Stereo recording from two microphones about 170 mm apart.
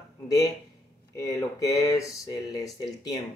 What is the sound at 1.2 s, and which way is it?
Speech, 20° left (ahead or behind).